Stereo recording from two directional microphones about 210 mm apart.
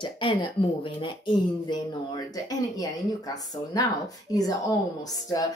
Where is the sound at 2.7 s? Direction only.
15° left (ahead or behind).